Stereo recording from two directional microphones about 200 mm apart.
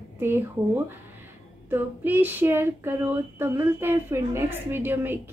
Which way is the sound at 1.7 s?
10° right (ahead or behind).